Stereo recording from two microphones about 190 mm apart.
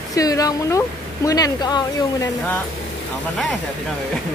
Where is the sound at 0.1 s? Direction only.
20° left (ahead or behind).